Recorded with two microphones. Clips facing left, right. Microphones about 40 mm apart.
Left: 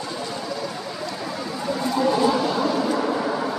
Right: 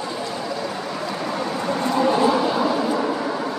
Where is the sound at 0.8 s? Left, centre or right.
Right.